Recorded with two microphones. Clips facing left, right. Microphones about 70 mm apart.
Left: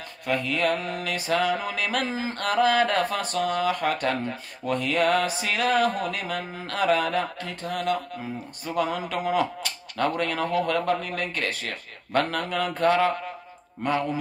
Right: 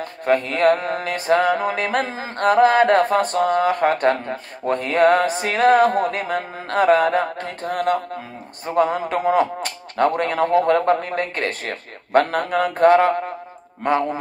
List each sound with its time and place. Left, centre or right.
0.2 s mantra: right